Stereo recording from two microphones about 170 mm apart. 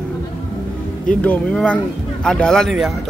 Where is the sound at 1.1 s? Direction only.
5° left (ahead or behind).